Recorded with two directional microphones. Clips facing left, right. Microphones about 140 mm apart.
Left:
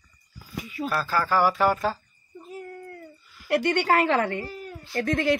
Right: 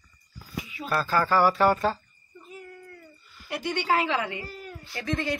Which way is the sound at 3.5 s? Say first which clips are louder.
Left 5 dB; 65° left (ahead or behind).